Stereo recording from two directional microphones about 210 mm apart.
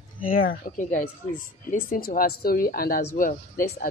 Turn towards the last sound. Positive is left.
turn(degrees=40)  # may be behind; listen again after turning